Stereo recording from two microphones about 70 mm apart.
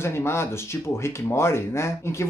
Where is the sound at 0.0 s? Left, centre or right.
Left.